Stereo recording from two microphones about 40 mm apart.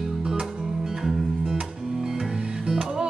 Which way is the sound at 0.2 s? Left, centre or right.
Centre.